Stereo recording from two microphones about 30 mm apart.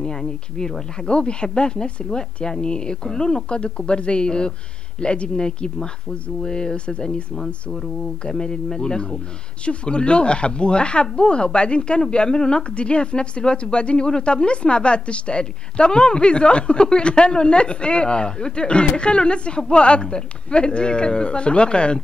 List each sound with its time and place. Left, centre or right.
0.0 s speech: left
1.0 s speech: left
3.4 s speech: left
8.3 s speech: left
12.7 s speech: left